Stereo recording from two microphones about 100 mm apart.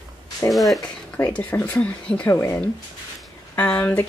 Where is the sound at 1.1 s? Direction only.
15° left (ahead or behind).